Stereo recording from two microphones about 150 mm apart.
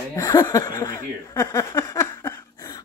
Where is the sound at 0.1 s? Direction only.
20° left (ahead or behind).